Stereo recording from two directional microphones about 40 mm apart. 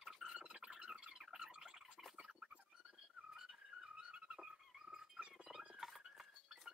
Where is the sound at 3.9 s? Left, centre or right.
Right.